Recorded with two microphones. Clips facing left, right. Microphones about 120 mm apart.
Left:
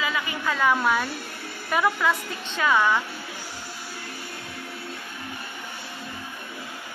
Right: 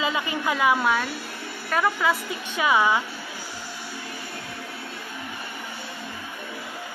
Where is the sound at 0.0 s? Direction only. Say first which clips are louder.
Right 2 dB; 20° right (ahead or behind).